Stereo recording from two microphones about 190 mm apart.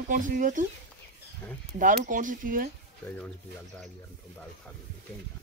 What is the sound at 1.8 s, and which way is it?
Speech, 45° right (ahead or behind).